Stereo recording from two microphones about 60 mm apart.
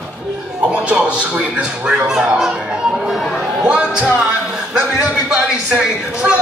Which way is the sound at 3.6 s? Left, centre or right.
Centre.